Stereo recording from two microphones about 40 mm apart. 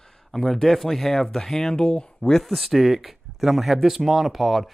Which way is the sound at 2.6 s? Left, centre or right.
Centre.